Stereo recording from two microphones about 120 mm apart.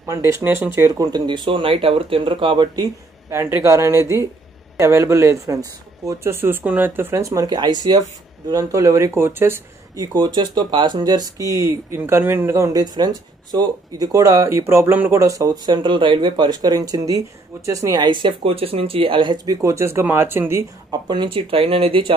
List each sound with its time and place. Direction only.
0.3 s speech: 20° right (ahead or behind); by 2.9 s 35° right (ahead or behind)
3.3 s speech: 20° right (ahead or behind)
9.9 s speech: 35° right (ahead or behind); by 20.6 s 20° right (ahead or behind)
21.1 s speech: 40° right (ahead or behind)